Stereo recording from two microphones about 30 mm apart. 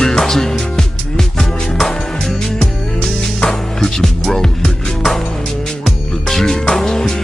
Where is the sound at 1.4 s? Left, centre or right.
Centre.